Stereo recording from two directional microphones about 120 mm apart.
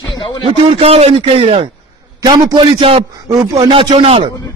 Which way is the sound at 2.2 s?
40° right (ahead or behind).